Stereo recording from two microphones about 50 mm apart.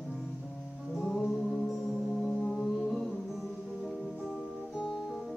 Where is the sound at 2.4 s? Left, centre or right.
Centre.